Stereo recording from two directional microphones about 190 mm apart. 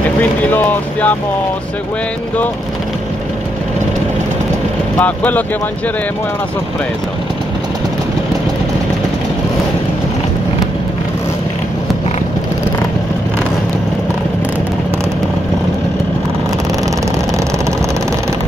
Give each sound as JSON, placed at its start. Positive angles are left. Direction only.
{"t": 0.2, "sound": "speech", "side_deg": 10}
{"t": 4.9, "sound": "speech", "side_deg": 10}